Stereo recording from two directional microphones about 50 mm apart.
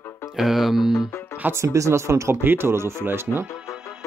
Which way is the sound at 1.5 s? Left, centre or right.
Right.